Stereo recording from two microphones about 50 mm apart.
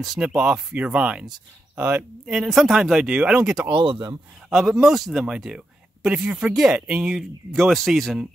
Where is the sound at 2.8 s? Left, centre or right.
Centre.